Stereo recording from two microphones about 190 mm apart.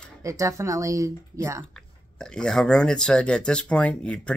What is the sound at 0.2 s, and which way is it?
Speech, 15° right (ahead or behind).